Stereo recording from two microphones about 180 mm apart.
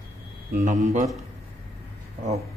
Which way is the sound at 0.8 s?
40° right (ahead or behind).